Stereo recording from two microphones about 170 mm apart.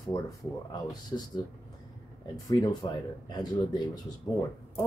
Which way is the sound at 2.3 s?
20° left (ahead or behind).